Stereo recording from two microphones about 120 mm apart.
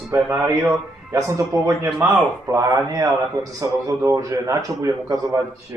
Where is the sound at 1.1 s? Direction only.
30° right (ahead or behind).